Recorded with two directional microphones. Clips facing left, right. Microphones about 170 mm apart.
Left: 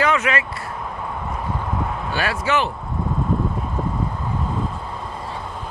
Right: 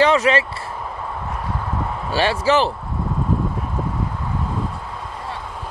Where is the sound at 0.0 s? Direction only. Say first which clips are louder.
Right 5 dB; 30° right (ahead or behind).